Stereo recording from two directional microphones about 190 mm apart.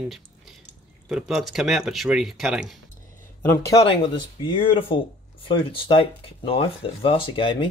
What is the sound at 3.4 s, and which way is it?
Speech, 15° left (ahead or behind).